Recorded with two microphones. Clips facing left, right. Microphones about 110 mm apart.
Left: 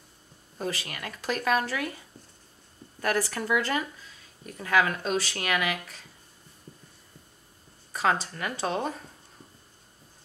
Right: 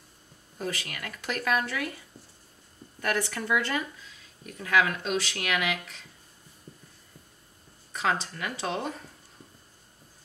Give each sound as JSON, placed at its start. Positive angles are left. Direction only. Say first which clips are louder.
{"t": 0.6, "sound": "speech", "louder": "left 1 dB", "side_deg": 30}
{"t": 3.0, "sound": "speech", "louder": "left 2 dB", "side_deg": 35}
{"t": 7.9, "sound": "a sound", "louder": "left 2 dB", "side_deg": 40}
{"t": 8.4, "sound": "speech", "louder": "left 2 dB", "side_deg": 40}